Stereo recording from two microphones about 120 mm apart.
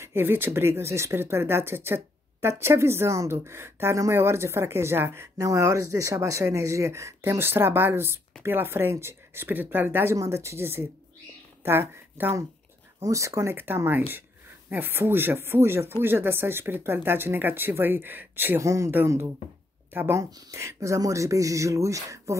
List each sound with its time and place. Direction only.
0.0 s speech: 20° right (ahead or behind)